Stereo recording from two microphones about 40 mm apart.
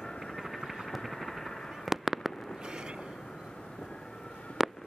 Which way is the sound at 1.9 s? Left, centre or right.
Centre.